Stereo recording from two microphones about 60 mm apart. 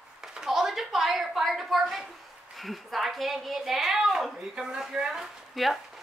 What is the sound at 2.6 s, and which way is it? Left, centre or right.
A woman's voice, centre.